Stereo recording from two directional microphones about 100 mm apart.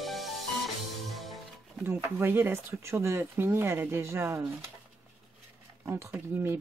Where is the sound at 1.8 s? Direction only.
20° right (ahead or behind).